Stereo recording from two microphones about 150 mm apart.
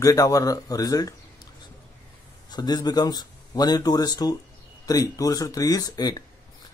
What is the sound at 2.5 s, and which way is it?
Speech, 25° left (ahead or behind).